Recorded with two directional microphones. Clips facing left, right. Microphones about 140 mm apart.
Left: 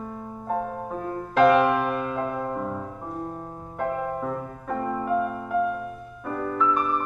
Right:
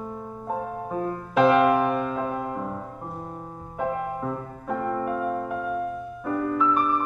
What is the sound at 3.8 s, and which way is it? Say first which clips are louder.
Music: even; centre (ahead or behind).